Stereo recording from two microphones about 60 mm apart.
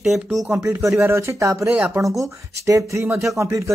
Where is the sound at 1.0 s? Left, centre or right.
Right.